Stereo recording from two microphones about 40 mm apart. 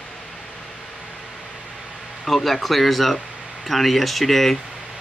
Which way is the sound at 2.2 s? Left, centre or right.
Centre.